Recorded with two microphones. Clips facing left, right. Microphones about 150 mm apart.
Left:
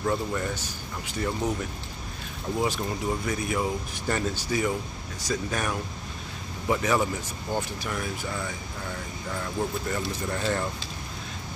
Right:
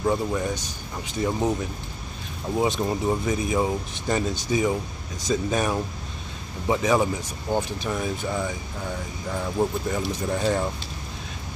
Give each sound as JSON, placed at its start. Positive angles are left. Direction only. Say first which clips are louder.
{"t": 0.0, "sound": "speech", "louder": "right 4 dB", "side_deg": -15}
{"t": 2.6, "sound": "speech", "louder": "right 5 dB", "side_deg": -20}
{"t": 9.8, "sound": "speech", "louder": "right 4 dB", "side_deg": -10}